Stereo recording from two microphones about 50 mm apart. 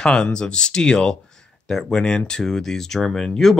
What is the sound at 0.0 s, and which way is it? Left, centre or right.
Speech, centre.